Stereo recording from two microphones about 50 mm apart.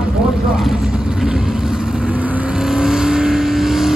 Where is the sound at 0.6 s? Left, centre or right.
Centre.